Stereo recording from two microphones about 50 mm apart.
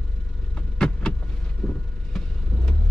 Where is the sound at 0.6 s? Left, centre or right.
Centre.